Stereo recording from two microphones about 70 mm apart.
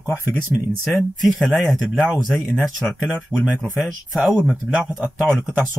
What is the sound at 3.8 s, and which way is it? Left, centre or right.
Speech, centre.